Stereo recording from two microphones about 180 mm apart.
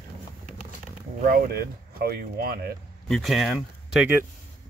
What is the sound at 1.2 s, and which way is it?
Speech, 55° right (ahead or behind).